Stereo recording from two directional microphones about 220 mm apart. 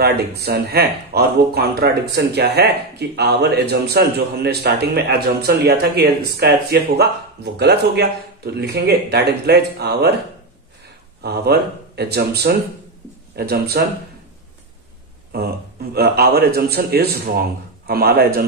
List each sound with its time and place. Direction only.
0.0 s speech: 45° right (ahead or behind)
11.2 s speech: 45° right (ahead or behind)
15.3 s speech: 45° right (ahead or behind)